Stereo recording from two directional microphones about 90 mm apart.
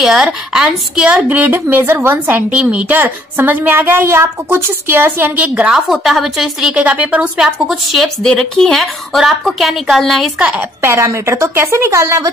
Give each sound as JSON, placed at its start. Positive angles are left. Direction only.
{"t": 0.0, "sound": "a woman's voice", "side_deg": -5}
{"t": 1.0, "sound": "a woman's voice", "side_deg": -20}
{"t": 5.4, "sound": "a woman's voice", "side_deg": -10}
{"t": 6.7, "sound": "a woman's voice", "side_deg": -15}
{"t": 10.8, "sound": "a woman's voice", "side_deg": -30}